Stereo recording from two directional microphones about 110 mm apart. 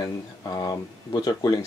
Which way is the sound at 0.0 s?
35° left (ahead or behind).